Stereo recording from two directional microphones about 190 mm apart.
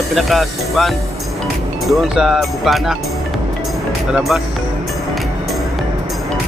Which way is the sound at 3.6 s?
Centre (ahead or behind).